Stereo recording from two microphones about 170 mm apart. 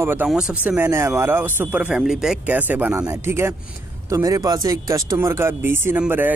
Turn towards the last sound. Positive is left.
turn(degrees=-10)  # may be behind; listen again after turning